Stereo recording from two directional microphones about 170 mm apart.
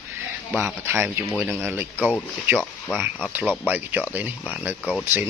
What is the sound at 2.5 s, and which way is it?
Speech, 15° right (ahead or behind).